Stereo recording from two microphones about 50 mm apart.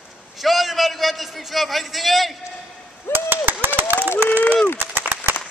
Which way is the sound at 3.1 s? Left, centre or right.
Right.